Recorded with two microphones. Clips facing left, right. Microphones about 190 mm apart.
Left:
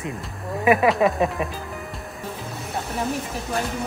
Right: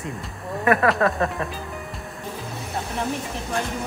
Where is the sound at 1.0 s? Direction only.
15° left (ahead or behind).